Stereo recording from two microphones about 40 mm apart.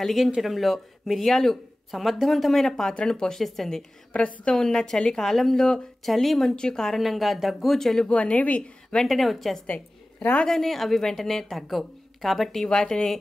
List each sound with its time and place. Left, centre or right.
0.0 s speech: centre
2.6 s a woman's voice: centre
4.1 s speech: left
4.6 s a woman's voice: centre
6.5 s speech: centre
6.8 s speech: centre
8.1 s a woman's voice: left
9.0 s a woman's voice: centre